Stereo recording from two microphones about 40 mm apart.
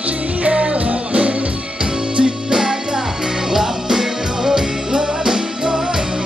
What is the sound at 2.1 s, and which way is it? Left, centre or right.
Music, centre.